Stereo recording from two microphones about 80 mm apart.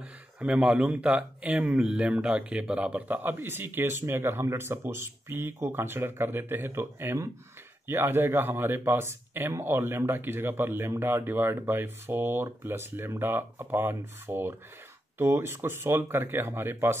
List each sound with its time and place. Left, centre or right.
0.4 s speech: centre; by 16.9 s right